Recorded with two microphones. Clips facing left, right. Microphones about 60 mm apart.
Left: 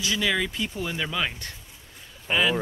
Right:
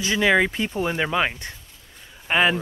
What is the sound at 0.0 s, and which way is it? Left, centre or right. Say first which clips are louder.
Speech: right 7 dB; right.